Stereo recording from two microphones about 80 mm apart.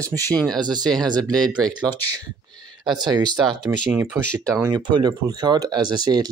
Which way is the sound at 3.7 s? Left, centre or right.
Right.